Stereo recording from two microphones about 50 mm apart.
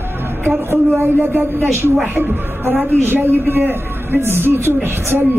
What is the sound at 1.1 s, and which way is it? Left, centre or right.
A man's voice, right.